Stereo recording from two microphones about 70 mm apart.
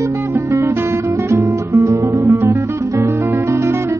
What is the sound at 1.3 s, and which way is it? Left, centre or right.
Guitar, right.